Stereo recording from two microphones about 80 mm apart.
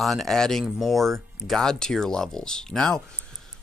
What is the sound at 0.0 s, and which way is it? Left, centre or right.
Speech, centre.